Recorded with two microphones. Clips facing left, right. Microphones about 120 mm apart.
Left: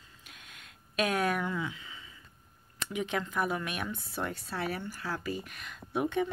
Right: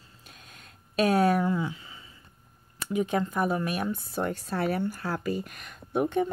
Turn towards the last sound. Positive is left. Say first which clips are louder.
# right 4 dB
turn(degrees=-45)  # may be behind; listen again after turning